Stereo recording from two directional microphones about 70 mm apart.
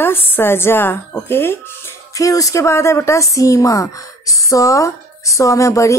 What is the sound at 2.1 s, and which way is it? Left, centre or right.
A woman's voice, left.